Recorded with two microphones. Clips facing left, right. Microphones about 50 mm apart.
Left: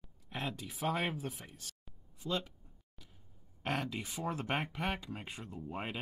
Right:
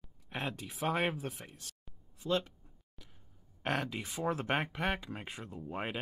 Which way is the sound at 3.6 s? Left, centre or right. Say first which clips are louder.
Right 2 dB; centre.